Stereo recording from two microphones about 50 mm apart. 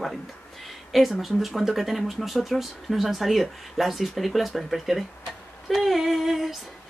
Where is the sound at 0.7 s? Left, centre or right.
Centre.